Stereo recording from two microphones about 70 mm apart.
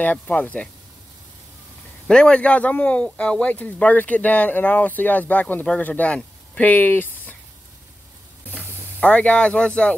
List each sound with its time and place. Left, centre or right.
0.0 s a man's voice: left
2.0 s a man's voice: centre
9.0 s speech: centre